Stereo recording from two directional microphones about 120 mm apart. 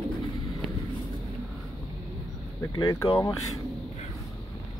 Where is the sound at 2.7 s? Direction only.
25° left (ahead or behind).